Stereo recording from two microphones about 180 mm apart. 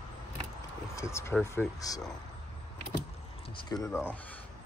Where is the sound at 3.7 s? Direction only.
20° left (ahead or behind).